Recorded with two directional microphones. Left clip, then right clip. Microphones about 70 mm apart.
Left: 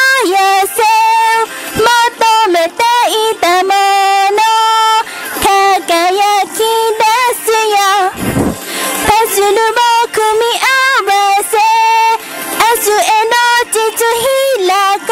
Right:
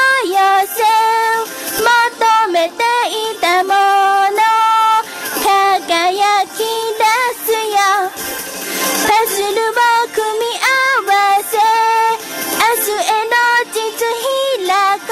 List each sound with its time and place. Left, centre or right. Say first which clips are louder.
0.0 s music: left 3 dB; left
4.4 s a sound: left 2 dB; left
8.8 s music: left 2 dB; centre
9.1 s music: left 6 dB; left
11.8 s female singing: left 4 dB; left
12.8 s music: left 6 dB; left